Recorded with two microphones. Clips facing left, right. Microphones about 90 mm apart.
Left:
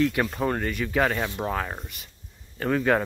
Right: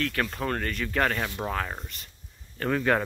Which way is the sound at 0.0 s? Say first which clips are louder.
Left 5 dB; 15° left (ahead or behind).